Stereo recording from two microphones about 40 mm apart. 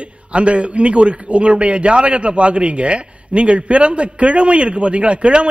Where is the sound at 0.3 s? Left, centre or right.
Right.